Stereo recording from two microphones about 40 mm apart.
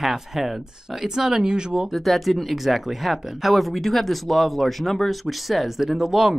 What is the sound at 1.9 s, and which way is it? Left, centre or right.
Speech, centre.